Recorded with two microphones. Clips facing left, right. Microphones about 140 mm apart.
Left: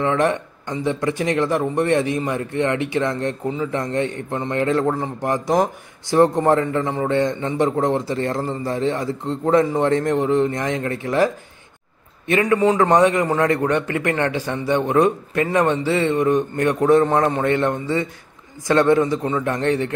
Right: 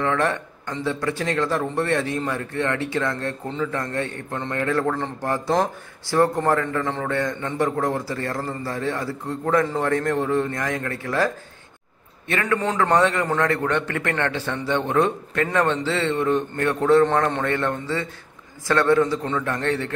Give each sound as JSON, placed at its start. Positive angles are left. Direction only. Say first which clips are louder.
{"t": 0.0, "sound": "speech", "louder": "left 3 dB", "side_deg": 15}